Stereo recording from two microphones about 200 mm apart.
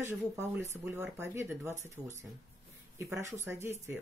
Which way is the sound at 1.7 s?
35° right (ahead or behind).